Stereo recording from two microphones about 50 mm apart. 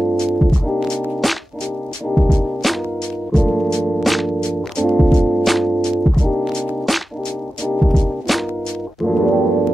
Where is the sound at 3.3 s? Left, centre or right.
Centre.